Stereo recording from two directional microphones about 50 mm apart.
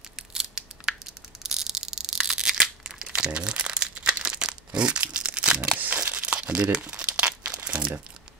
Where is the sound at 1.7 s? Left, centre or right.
Centre.